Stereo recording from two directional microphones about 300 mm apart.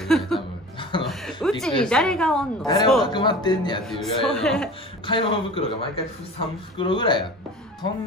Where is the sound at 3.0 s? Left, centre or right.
Centre.